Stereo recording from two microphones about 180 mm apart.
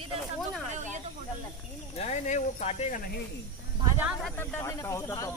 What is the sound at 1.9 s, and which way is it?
Speech, 40° left (ahead or behind).